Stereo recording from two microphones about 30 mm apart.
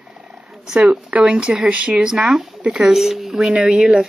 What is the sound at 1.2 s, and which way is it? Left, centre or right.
Speech, right.